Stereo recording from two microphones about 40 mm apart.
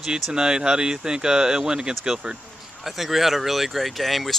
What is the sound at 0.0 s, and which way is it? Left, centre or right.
Speech, centre.